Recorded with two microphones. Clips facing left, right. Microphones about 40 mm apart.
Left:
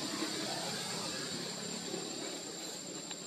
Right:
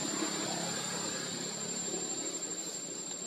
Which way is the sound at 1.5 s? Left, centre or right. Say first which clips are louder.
Right 1 dB; centre.